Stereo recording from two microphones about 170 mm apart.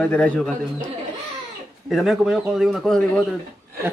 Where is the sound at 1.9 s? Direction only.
Centre (ahead or behind).